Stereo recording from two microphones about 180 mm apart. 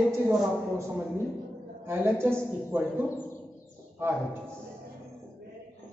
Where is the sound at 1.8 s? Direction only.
15° right (ahead or behind).